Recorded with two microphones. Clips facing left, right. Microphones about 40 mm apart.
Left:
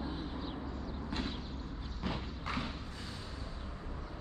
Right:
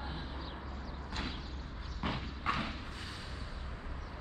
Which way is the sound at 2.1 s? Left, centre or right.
Right.